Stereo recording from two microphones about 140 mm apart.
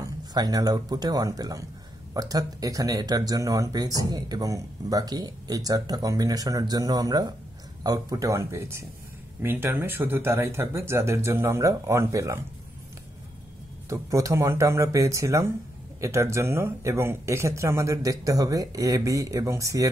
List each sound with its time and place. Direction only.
0.0 s speech: 25° right (ahead or behind)
13.8 s speech: 20° right (ahead or behind)